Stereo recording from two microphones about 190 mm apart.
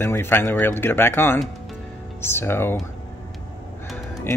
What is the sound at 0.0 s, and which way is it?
Speech, 10° left (ahead or behind).